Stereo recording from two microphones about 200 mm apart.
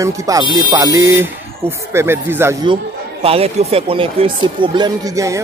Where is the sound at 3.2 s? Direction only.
30° right (ahead or behind).